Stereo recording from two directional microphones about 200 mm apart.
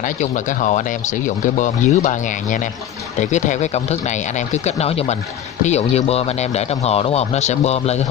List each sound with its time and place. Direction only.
0.0 s speech: 40° left (ahead or behind)